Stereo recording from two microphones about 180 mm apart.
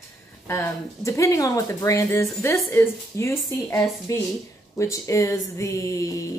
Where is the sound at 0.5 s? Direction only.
15° left (ahead or behind).